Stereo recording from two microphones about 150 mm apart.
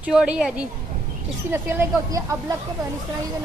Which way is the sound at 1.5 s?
20° right (ahead or behind).